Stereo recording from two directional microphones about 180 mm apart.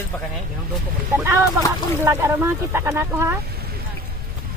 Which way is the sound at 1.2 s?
15° right (ahead or behind).